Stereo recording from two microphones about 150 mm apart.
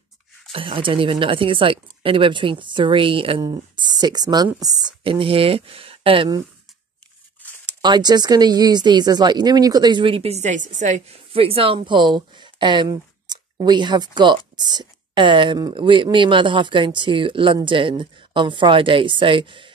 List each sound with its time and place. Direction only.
0.5 s speech: 35° right (ahead or behind)
7.8 s speech: 30° right (ahead or behind); by 11.1 s 55° right (ahead or behind)
11.3 s speech: 40° right (ahead or behind)